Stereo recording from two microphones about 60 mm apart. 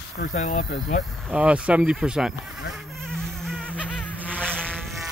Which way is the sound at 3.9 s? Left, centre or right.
Left.